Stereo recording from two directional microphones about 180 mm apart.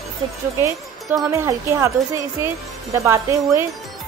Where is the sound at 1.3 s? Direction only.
15° right (ahead or behind).